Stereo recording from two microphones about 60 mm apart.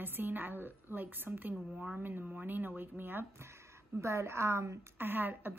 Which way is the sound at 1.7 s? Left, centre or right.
Centre.